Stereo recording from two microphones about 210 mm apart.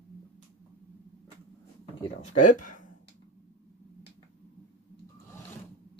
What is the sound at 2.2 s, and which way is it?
Speech, 35° left (ahead or behind).